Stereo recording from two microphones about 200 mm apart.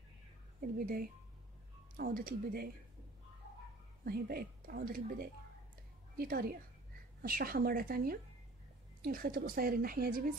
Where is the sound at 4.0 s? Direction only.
50° right (ahead or behind).